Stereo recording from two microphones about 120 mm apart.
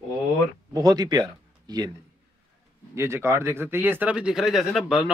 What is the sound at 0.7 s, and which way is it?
A man's voice, 30° right (ahead or behind).